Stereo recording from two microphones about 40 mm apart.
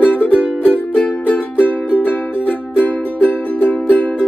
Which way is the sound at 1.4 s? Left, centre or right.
Left.